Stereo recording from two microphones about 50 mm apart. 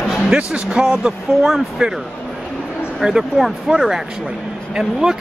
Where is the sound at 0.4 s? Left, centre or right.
Right.